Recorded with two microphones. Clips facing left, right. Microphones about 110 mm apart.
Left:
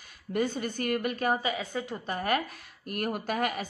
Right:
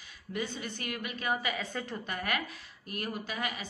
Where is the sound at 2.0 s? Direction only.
35° left (ahead or behind).